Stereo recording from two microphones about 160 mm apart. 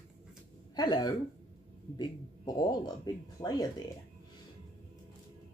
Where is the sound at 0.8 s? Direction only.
25° left (ahead or behind).